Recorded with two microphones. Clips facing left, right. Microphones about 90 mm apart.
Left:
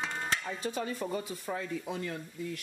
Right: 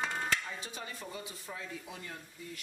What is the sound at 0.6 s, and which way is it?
Speech, 50° left (ahead or behind).